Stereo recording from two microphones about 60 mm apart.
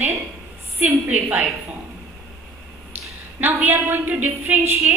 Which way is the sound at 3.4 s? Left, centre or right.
Right.